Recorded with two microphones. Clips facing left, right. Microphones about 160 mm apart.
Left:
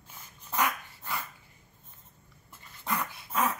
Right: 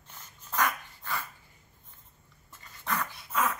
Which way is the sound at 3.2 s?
30° left (ahead or behind).